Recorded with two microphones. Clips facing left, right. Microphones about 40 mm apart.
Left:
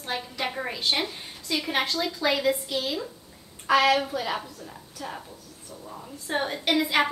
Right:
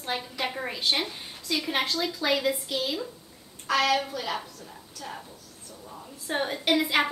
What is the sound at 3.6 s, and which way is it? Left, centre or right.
A woman's voice, centre.